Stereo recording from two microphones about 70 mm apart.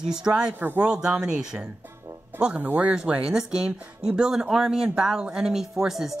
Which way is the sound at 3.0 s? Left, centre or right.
Centre.